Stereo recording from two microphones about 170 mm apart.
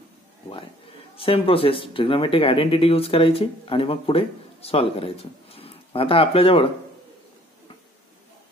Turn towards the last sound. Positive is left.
turn(degrees=35)  # may be behind; listen again after turning